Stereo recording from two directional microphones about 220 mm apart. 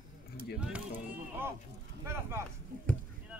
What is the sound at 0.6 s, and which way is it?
Speech, 5° right (ahead or behind).